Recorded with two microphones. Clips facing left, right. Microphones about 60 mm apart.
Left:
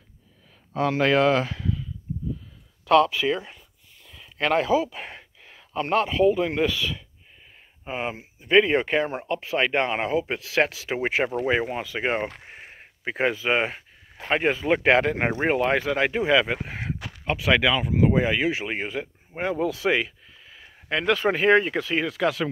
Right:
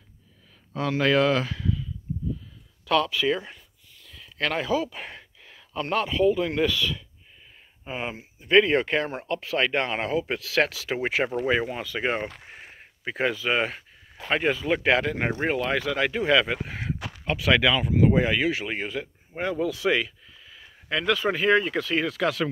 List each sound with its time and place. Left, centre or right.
0.7 s speech: left
2.9 s speech: left
4.0 s a sound: centre
4.8 s speech: centre; by 15.2 s left
15.2 s speech: left